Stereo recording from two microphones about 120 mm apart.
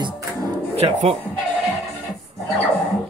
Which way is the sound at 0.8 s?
65° right (ahead or behind).